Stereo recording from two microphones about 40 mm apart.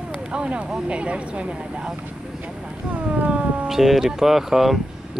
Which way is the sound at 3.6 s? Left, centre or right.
Centre.